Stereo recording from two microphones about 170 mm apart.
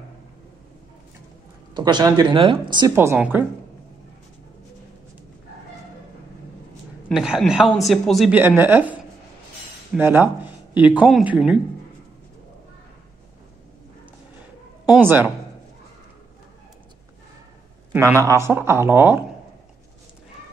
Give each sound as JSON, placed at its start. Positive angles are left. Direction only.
{"t": 1.7, "sound": "speech", "side_deg": -25}
{"t": 3.0, "sound": "speech", "side_deg": -15}
{"t": 7.1, "sound": "a woman's voice", "side_deg": 0}
{"t": 8.4, "sound": "a woman's voice", "side_deg": -15}
{"t": 15.0, "sound": "speech", "side_deg": -10}
{"t": 17.9, "sound": "speech", "side_deg": -15}